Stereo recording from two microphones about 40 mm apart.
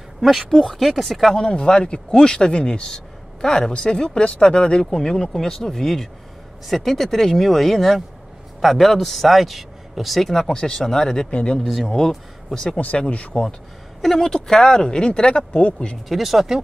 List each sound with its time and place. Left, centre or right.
0.2 s a man's voice: centre
1.4 s a man's voice: centre
10.3 s speech: centre
11.2 s speech: left
11.6 s a man's voice: centre
12.5 s speech: left
13.3 s speech: centre
14.0 s speech: centre
14.3 s speech: centre
16.1 s speech: centre